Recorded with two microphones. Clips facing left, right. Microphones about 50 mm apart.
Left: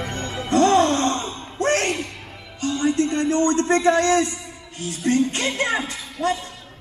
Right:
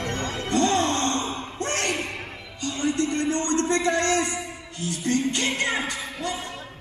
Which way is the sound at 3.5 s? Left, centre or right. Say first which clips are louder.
Left 5 dB; left.